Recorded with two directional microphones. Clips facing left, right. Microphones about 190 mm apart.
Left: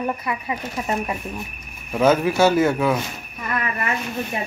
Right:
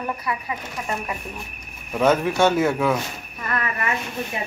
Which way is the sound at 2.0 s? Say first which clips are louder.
Left 2 dB; 5° left (ahead or behind).